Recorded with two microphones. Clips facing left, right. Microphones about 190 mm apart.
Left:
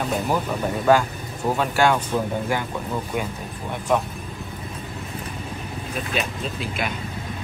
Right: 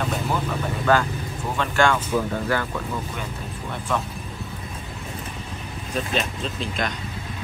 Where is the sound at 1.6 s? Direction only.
10° left (ahead or behind).